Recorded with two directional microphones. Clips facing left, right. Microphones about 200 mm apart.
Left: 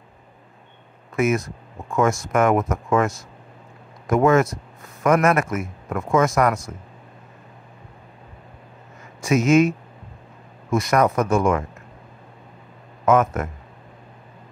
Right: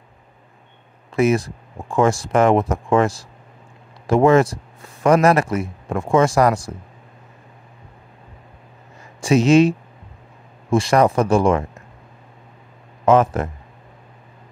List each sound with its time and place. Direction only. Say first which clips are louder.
1.1 s speech: right 4 dB; 30° right (ahead or behind)
9.2 s speech: right 3 dB; 30° right (ahead or behind)
13.0 s speech: right 3 dB; 30° right (ahead or behind)